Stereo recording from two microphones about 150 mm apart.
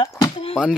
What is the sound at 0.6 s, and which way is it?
Speech, 5° right (ahead or behind).